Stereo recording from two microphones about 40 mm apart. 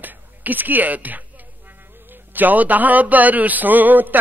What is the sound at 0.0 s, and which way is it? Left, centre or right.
Speech, right.